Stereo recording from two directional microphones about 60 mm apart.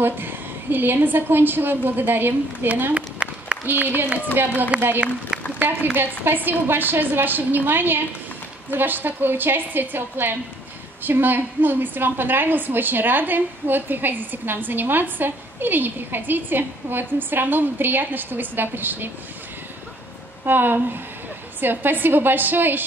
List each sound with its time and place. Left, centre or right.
0.0 s a woman's voice: right
3.2 s applause: centre
3.6 s a woman's voice: right
20.4 s a woman's voice: right